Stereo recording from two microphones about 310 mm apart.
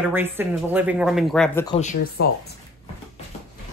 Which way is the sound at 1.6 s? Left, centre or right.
Left.